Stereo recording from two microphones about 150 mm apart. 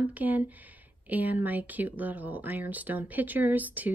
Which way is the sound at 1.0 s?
10° right (ahead or behind).